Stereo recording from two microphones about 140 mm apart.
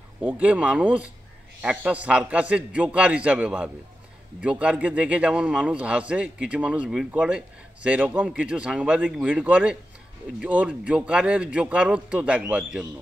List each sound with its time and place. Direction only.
0.2 s a man's voice: 10° right (ahead or behind)